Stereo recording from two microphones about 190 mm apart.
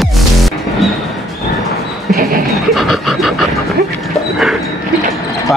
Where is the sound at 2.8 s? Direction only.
Centre (ahead or behind).